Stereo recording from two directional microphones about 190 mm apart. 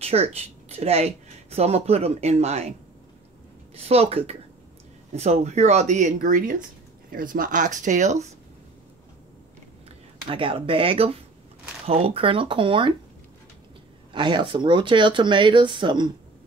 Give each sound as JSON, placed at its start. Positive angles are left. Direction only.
{"t": 0.0, "sound": "speech", "side_deg": -35}
{"t": 3.7, "sound": "speech", "side_deg": -35}
{"t": 10.3, "sound": "speech", "side_deg": -30}
{"t": 14.1, "sound": "speech", "side_deg": -25}